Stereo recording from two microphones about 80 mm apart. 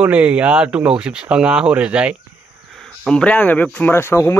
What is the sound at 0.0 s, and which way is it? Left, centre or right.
Speech, centre.